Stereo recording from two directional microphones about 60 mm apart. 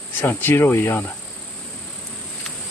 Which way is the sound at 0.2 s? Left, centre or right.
Left.